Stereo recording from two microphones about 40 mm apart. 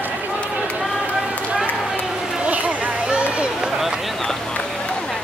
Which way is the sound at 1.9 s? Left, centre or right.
Right.